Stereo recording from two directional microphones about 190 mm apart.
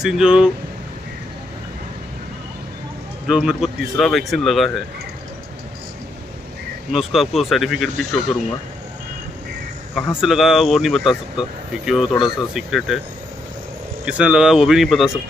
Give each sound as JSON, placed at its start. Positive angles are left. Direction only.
{"t": 0.0, "sound": "speech", "side_deg": -5}
{"t": 3.3, "sound": "speech", "side_deg": -5}
{"t": 6.9, "sound": "speech", "side_deg": 0}
{"t": 9.9, "sound": "speech", "side_deg": 0}
{"t": 14.0, "sound": "speech", "side_deg": -5}